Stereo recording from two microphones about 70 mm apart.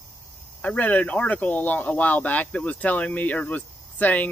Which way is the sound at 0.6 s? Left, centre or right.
Left.